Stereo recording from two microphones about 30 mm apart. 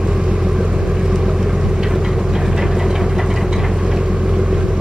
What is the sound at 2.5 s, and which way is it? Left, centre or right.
Vehicle, centre.